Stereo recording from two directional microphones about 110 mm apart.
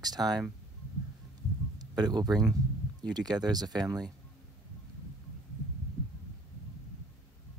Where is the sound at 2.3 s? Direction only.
Centre (ahead or behind).